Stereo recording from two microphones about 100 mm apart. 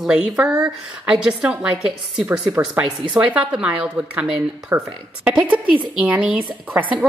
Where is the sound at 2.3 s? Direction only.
30° right (ahead or behind).